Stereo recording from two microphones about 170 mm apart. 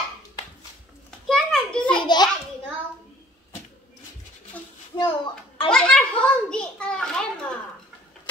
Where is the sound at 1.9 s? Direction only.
25° left (ahead or behind).